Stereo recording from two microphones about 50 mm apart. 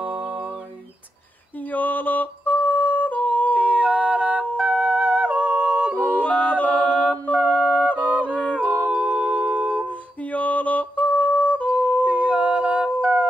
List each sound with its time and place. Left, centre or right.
0.0 s music: right
1.7 s music: left
3.5 s yodeling: right
4.6 s music: centre; by 5.9 s right
6.2 s a capella: left
7.4 s music: left
8.9 s music: right
9.8 s music: left
12.0 s a capella: right